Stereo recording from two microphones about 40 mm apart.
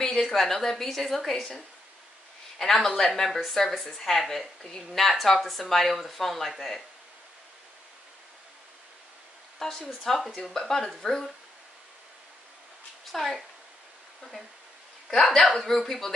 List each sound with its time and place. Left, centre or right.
0.0 s a sound: centre
0.3 s a woman's voice: centre
2.6 s a woman's voice: centre
3.3 s a woman's voice: centre
9.6 s a woman's voice: centre
13.1 s speech: centre
15.0 s a woman's voice: centre